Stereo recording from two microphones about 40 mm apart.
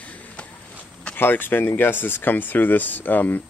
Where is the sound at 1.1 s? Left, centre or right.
Left.